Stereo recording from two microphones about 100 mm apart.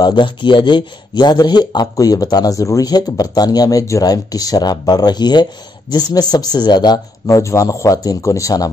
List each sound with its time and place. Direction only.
0.0 s speech: 50° left (ahead or behind)
7.2 s speech: 30° left (ahead or behind)